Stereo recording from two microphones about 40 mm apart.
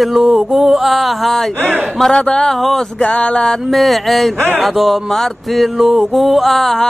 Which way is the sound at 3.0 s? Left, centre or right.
Left.